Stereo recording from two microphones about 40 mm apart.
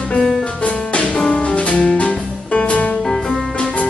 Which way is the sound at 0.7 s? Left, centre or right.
Left.